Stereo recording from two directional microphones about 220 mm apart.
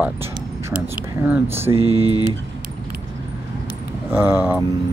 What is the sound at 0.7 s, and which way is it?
Speech, 5° right (ahead or behind).